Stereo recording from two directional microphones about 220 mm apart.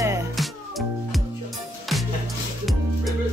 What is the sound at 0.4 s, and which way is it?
Music, centre (ahead or behind).